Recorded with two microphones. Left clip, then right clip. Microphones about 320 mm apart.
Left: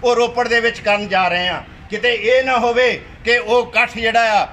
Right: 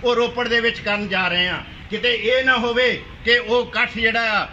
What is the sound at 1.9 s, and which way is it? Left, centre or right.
Speech, left.